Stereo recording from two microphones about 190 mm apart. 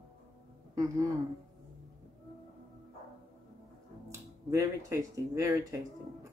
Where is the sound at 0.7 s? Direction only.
15° right (ahead or behind).